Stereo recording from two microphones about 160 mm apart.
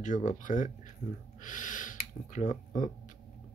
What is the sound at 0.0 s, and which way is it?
Speech, 50° left (ahead or behind).